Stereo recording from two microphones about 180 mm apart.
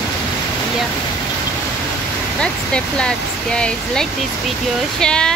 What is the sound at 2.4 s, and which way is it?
Speech, 5° left (ahead or behind).